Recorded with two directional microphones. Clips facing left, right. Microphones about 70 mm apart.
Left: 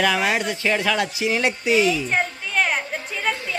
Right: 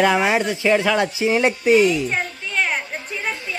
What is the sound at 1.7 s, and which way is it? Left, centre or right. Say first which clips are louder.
Speech: right 4 dB; right.